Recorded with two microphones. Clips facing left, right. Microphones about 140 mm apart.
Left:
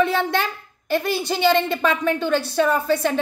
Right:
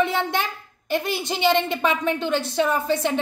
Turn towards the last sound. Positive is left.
turn(degrees=-20)  # may be behind; listen again after turning